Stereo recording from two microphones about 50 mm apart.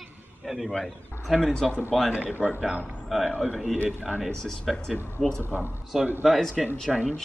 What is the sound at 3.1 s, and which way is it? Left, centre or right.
Speech, centre.